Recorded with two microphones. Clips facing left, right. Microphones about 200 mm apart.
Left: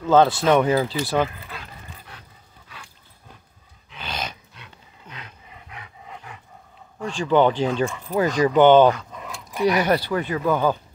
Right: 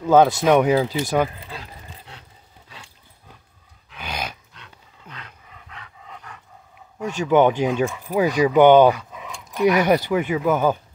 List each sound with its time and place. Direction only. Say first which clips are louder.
0.0 s speech: right 2 dB; 10° right (ahead or behind)
1.4 s dog: right 2 dB; 30° right (ahead or behind)
3.9 s dog: right 1 dB; 10° right (ahead or behind)
5.7 s roar: left 1 dB; 10° left (ahead or behind)
7.0 s speech: right 2 dB; 10° right (ahead or behind)
9.8 s speech: right 3 dB; 20° right (ahead or behind)